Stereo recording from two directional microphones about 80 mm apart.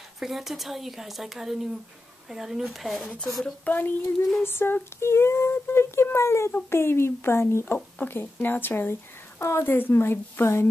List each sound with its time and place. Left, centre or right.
0.2 s speech: centre
3.6 s speech: left
4.5 s child singing: left
6.7 s speech: left